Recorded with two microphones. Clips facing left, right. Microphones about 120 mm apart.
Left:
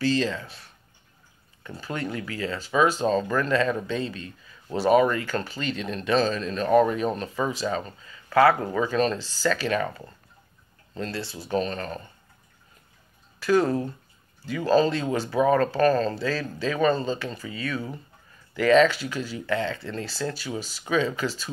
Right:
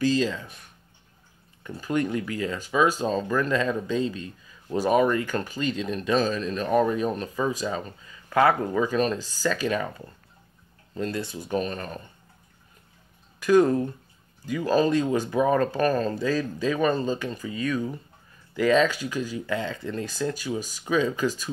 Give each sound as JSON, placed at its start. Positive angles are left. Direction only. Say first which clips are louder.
{"t": 0.0, "sound": "speech", "louder": "right 1 dB", "side_deg": -15}
{"t": 1.8, "sound": "speech", "louder": "right 5 dB", "side_deg": -15}
{"t": 8.3, "sound": "speech", "louder": "left 2 dB", "side_deg": -20}
{"t": 8.7, "sound": "speech", "louder": "even", "side_deg": -10}
{"t": 13.4, "sound": "speech", "louder": "right 3 dB", "side_deg": -20}